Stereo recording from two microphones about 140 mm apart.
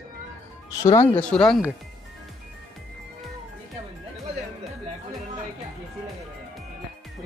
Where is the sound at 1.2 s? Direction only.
5° left (ahead or behind).